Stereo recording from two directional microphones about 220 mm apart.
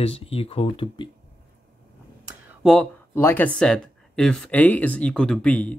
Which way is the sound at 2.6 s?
Centre (ahead or behind).